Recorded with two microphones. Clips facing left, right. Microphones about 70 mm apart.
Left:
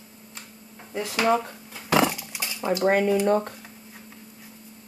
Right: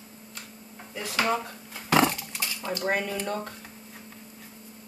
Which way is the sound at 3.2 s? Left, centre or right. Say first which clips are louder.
Left 10 dB; left.